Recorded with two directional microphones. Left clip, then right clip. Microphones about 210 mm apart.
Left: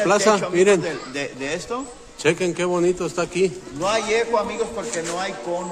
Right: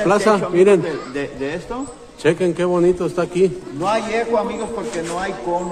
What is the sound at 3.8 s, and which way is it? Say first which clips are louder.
Speech: right 1 dB; 55° left (ahead or behind).